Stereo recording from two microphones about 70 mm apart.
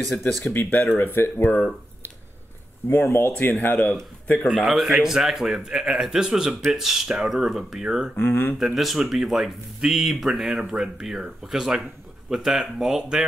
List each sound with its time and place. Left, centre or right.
0.4 s speech: left
2.9 s speech: left
4.6 s speech: centre
8.2 s speech: left
8.5 s speech: centre